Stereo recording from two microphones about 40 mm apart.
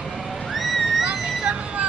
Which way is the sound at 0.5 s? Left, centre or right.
Centre.